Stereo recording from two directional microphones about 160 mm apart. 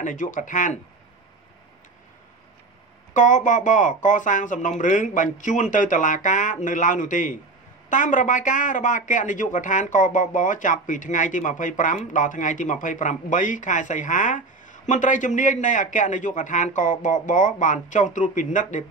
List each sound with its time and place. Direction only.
0.0 s speech: 55° left (ahead or behind)
3.1 s speech: 50° left (ahead or behind)